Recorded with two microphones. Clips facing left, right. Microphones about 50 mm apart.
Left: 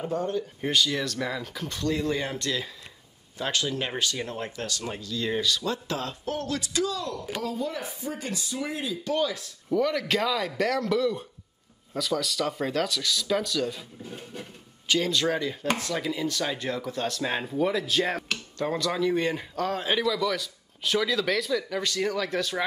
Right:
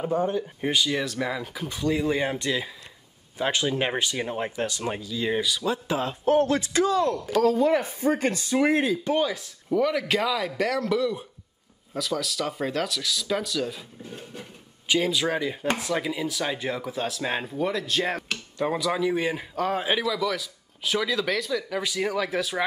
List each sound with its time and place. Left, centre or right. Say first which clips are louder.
0.0 s a man's voice: right 3 dB; centre
5.0 s a man's voice: even; centre
6.2 s speech: right 9 dB; right
7.4 s speech: right 11 dB; right
9.0 s speech: right 2 dB; right
9.7 s a man's voice: right 2 dB; centre